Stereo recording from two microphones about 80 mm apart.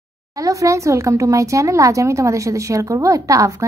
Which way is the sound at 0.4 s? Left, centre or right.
Right.